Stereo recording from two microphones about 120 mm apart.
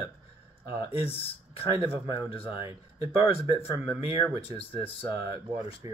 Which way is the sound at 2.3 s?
50° left (ahead or behind).